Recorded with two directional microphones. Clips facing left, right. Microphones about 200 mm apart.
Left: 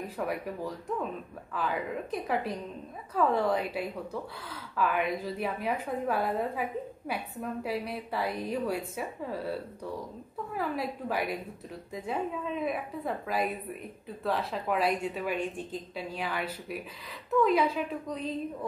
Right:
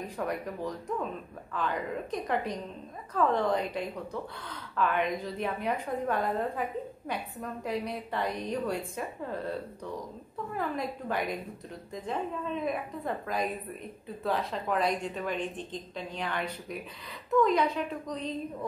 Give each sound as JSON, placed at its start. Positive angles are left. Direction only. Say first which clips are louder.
{"t": 0.0, "sound": "a woman's voice", "louder": "even", "side_deg": 5}